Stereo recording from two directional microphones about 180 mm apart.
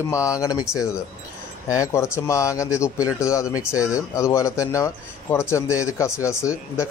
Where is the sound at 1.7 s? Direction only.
15° left (ahead or behind).